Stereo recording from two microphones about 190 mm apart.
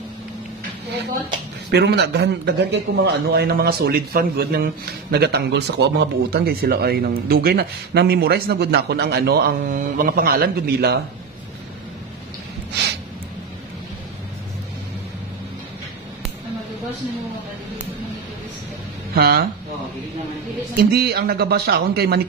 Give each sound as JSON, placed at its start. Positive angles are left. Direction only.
{"t": 1.7, "sound": "speech", "side_deg": -60}
{"t": 19.1, "sound": "speech", "side_deg": -55}
{"t": 20.7, "sound": "speech", "side_deg": -55}